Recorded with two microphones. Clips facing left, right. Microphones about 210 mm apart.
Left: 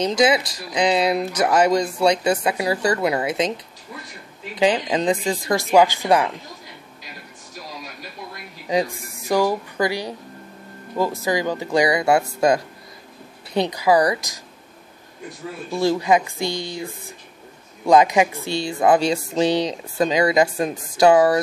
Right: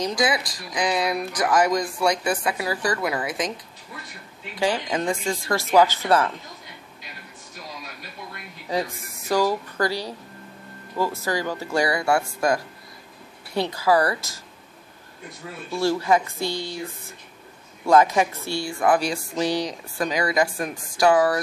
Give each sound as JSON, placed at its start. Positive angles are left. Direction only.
{"t": 0.0, "sound": "speech", "side_deg": 25}
{"t": 4.6, "sound": "speech", "side_deg": 20}
{"t": 8.6, "sound": "speech", "side_deg": 15}
{"t": 15.7, "sound": "speech", "side_deg": 15}